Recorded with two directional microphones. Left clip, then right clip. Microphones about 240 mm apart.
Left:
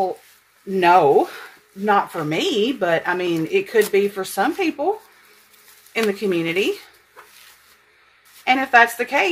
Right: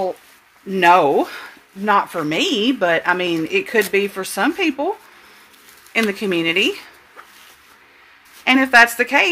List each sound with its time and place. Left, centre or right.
0.7 s speech: right
5.9 s speech: right
8.5 s speech: right